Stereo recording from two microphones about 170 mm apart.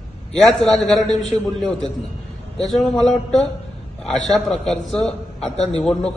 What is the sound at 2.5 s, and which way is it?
A man's voice, 5° left (ahead or behind).